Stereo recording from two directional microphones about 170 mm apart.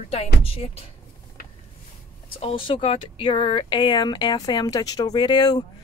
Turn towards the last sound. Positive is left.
turn(degrees=25)  # may be behind; listen again after turning